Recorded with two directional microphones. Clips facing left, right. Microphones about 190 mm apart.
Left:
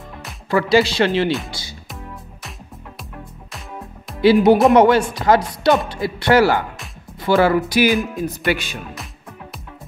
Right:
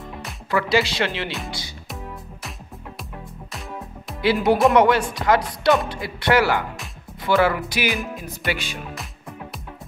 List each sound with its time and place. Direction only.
0.5 s speech: 35° left (ahead or behind)
1.3 s speech: centre (ahead or behind)
4.2 s speech: 30° left (ahead or behind)